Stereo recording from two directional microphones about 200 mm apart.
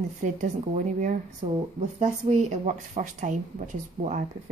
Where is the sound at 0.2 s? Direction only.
40° right (ahead or behind).